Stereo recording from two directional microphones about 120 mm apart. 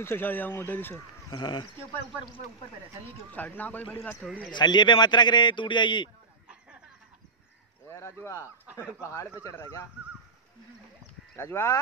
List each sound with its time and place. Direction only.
0.0 s a man's voice: 20° left (ahead or behind)
1.3 s a man's voice: 40° left (ahead or behind)
3.3 s speech: 15° left (ahead or behind)
4.5 s a man's voice: 40° left (ahead or behind)
7.9 s a man's voice: 25° left (ahead or behind)
11.3 s a man's voice: 20° left (ahead or behind)